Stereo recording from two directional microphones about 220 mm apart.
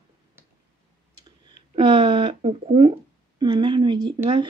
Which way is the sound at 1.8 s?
25° right (ahead or behind).